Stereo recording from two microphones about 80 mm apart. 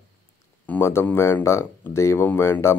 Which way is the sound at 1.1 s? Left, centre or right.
Left.